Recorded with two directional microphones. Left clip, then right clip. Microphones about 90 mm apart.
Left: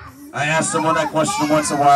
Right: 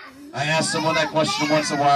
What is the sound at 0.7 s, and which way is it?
Speech, 50° left (ahead or behind).